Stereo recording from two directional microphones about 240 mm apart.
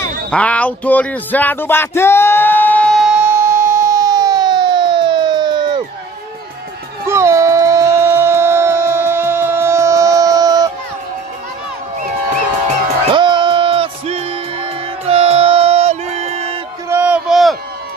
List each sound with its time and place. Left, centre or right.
0.0 s speech: centre
3.4 s siren: centre
7.1 s music: centre
12.6 s music: right
16.9 s a sound: centre